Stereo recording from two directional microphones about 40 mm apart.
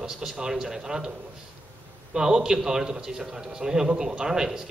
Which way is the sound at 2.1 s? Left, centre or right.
Centre.